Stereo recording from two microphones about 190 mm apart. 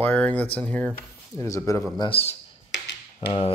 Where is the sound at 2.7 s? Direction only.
65° left (ahead or behind).